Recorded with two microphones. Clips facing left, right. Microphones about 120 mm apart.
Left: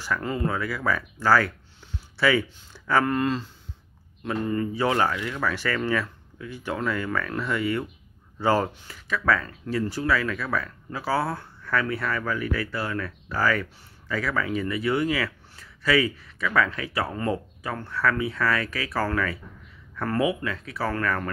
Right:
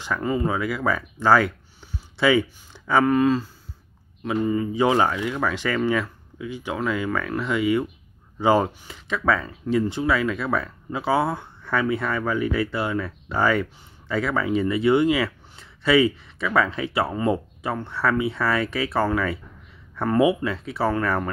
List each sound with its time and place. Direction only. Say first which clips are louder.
0.0 s speech: right 3 dB; 15° right (ahead or behind)
1.9 s a sound: right 3 dB; 15° right (ahead or behind)
3.1 s speech: right 6 dB; 5° right (ahead or behind); by 20.9 s 30° right (ahead or behind)